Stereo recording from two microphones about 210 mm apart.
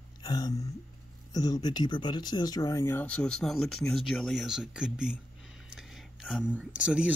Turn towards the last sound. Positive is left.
turn(degrees=-5)  # may be behind; listen again after turning